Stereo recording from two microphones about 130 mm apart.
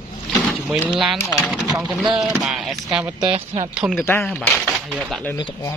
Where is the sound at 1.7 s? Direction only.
5° right (ahead or behind).